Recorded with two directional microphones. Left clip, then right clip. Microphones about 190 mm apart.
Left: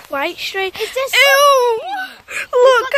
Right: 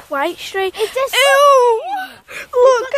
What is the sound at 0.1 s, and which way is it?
Speech, 30° right (ahead or behind).